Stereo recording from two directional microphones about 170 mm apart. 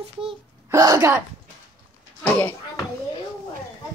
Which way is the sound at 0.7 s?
20° right (ahead or behind).